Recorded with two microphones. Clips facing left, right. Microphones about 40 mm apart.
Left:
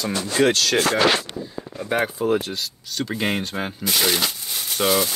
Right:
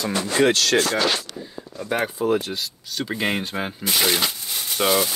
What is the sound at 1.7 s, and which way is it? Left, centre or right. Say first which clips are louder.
Speech: left 1 dB; centre.